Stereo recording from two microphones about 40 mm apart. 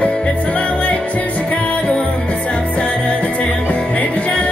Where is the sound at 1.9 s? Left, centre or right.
Left.